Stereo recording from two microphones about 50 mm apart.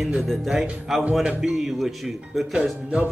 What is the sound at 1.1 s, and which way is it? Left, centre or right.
Speech, centre.